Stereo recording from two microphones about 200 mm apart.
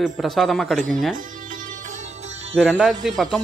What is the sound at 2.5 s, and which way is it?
Speech, centre (ahead or behind).